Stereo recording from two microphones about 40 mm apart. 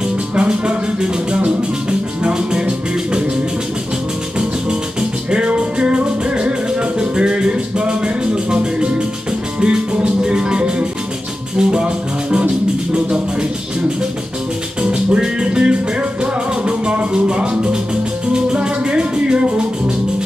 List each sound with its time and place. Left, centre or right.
0.0 s music: right
5.3 s music: right
14.8 s music: right